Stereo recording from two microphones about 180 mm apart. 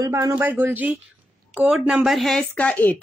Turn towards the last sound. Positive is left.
turn(degrees=10)  # may be behind; listen again after turning